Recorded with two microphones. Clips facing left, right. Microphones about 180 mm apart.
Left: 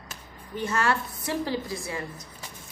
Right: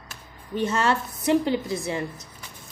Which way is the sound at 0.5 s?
20° right (ahead or behind).